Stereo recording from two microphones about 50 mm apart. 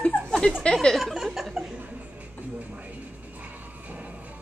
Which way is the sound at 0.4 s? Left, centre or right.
Left.